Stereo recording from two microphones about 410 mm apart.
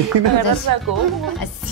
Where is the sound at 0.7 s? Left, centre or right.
Right.